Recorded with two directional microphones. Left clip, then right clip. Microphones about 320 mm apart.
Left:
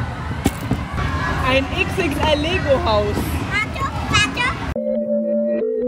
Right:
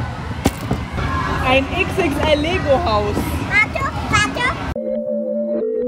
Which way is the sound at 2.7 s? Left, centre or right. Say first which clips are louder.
Right 1 dB; centre.